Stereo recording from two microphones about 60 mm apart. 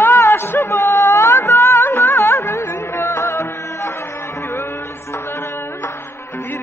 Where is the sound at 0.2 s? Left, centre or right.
Left.